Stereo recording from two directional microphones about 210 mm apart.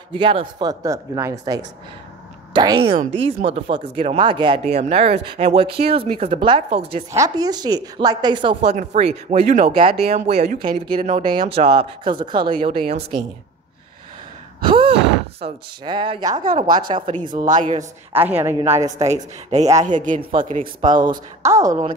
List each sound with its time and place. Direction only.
0.1 s speech: 25° right (ahead or behind)
2.5 s speech: 20° right (ahead or behind)
2.9 s speech: 30° right (ahead or behind)
7.1 s a woman's voice: 15° right (ahead or behind); by 10.8 s 35° right (ahead or behind)
10.9 s speech: 25° right (ahead or behind)
14.6 s sigh: 25° right (ahead or behind)
15.4 s speech: 20° right (ahead or behind)
17.3 s speech: 40° right (ahead or behind)
18.1 s a woman's voice: 10° right (ahead or behind)
19.5 s speech: 30° right (ahead or behind)
21.4 s a woman's voice: 15° right (ahead or behind)